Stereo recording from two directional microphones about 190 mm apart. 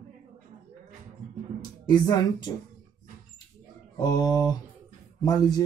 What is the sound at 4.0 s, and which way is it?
Speech, 15° left (ahead or behind).